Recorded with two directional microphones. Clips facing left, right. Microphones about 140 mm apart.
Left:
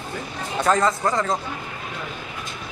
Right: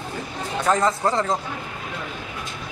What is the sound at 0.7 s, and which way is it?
Speech, 20° right (ahead or behind).